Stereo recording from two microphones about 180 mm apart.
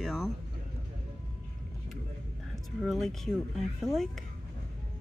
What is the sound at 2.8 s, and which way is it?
Speech, centre (ahead or behind).